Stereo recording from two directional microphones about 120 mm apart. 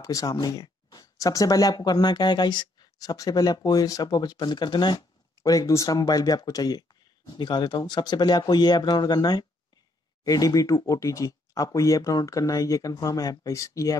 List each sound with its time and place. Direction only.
0.0 s speech: 25° left (ahead or behind)
5.4 s speech: 25° left (ahead or behind)